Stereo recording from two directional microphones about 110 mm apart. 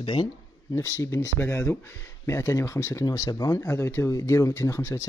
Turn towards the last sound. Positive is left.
turn(degrees=25)  # may be behind; listen again after turning